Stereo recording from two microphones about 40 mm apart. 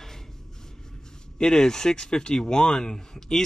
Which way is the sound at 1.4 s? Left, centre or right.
Centre.